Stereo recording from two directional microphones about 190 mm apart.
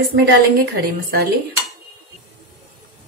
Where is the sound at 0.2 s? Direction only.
55° right (ahead or behind).